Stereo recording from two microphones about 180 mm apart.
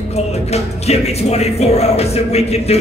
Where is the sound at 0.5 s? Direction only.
35° left (ahead or behind).